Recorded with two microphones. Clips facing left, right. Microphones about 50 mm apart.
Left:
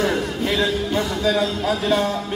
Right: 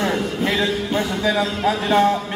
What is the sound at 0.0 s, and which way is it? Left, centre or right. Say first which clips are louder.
Music: even; right.